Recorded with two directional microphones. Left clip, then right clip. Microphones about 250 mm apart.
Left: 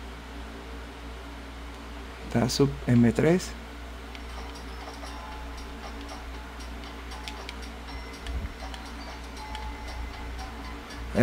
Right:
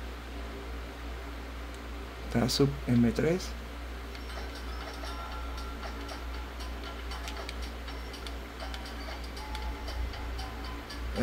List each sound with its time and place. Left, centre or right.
2.3 s speech: centre